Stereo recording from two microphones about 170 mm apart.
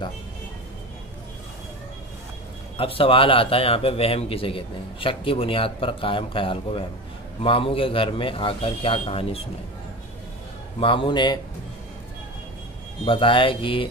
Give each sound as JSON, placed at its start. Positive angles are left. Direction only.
{"t": 2.8, "sound": "a man's voice", "side_deg": 30}
{"t": 10.8, "sound": "a man's voice", "side_deg": 30}
{"t": 13.0, "sound": "a man's voice", "side_deg": 30}